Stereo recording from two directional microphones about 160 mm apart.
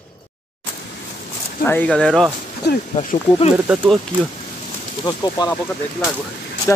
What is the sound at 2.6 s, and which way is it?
Speech, 90° left.